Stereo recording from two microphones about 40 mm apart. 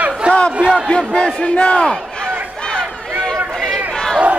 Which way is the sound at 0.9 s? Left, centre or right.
Left.